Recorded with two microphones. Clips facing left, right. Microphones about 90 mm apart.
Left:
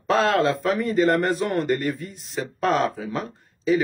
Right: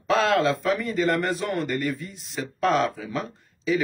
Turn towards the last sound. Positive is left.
turn(degrees=40)  # may be behind; listen again after turning